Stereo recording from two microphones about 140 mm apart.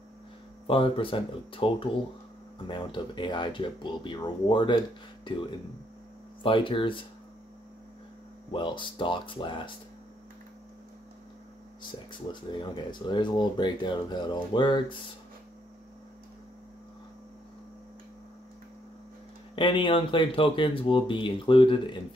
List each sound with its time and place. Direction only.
0.7 s speech: 40° left (ahead or behind)
6.4 s speech: 40° left (ahead or behind)
8.5 s speech: 35° left (ahead or behind)
12.1 s speech: 35° left (ahead or behind)
19.5 s speech: 35° left (ahead or behind)